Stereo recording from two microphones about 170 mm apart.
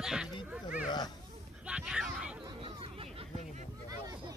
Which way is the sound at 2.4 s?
30° right (ahead or behind).